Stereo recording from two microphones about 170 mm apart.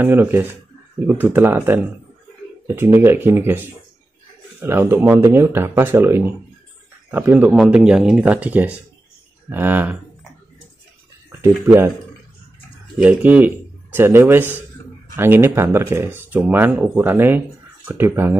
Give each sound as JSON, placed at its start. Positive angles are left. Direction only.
{"t": 0.0, "sound": "speech", "side_deg": -10}
{"t": 11.6, "sound": "speech", "side_deg": -15}
{"t": 13.0, "sound": "speech", "side_deg": -10}